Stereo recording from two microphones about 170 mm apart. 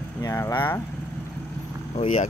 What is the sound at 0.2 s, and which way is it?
Speech, 15° left (ahead or behind).